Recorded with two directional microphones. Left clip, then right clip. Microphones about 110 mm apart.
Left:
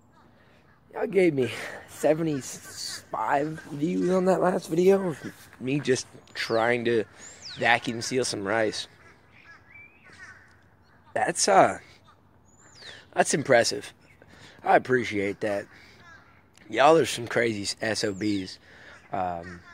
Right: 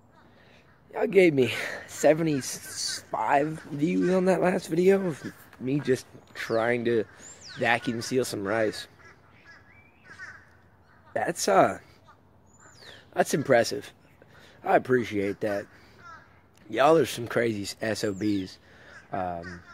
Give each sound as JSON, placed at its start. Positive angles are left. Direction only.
{"t": 0.9, "sound": "speech", "side_deg": -25}
{"t": 4.0, "sound": "speech", "side_deg": -5}
{"t": 4.4, "sound": "speech", "side_deg": -20}
{"t": 4.7, "sound": "speech", "side_deg": -5}
{"t": 7.2, "sound": "speech", "side_deg": -30}
{"t": 8.2, "sound": "speech", "side_deg": -20}
{"t": 11.1, "sound": "speech", "side_deg": -25}
{"t": 12.8, "sound": "speech", "side_deg": -20}